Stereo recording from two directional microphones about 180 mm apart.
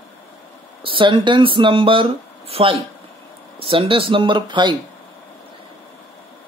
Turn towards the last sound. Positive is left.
turn(degrees=-25)  # may be behind; listen again after turning